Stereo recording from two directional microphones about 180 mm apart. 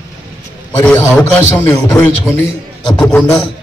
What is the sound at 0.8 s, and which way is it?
A man's voice, 15° left (ahead or behind).